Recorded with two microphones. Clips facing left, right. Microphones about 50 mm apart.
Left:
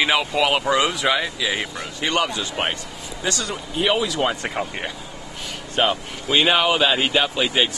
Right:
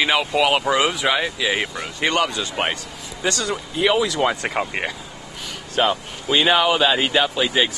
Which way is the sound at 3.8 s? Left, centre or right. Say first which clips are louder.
Right 2 dB; right.